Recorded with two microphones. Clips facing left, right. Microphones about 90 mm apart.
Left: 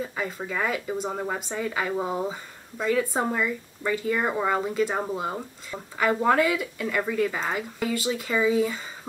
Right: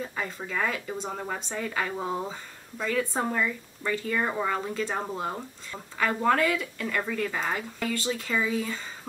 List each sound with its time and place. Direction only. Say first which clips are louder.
0.0 s a woman's voice: left 3 dB; 5° left (ahead or behind)